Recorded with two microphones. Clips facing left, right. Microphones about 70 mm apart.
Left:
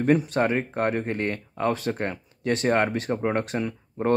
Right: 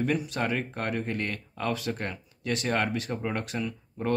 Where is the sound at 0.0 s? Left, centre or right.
Left.